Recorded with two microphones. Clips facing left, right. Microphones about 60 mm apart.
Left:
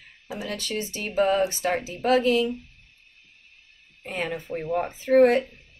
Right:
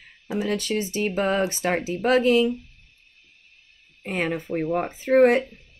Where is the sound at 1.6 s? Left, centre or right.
Right.